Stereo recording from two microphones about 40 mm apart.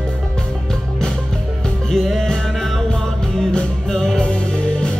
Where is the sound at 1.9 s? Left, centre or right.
Centre.